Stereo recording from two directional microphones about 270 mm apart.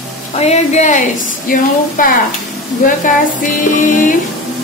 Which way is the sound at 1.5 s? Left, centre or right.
Left.